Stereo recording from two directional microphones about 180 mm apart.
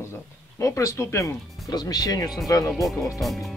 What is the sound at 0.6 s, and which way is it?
Speech, 15° left (ahead or behind).